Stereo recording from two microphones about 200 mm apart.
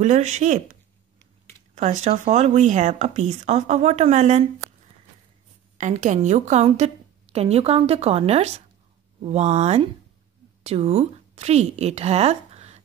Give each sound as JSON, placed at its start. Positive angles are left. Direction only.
{"t": 0.0, "sound": "speech", "side_deg": -35}
{"t": 1.8, "sound": "speech", "side_deg": -35}
{"t": 5.8, "sound": "a woman's voice", "side_deg": -35}